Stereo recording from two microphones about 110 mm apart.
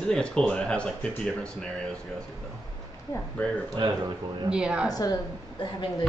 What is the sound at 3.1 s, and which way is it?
Speech, 15° left (ahead or behind).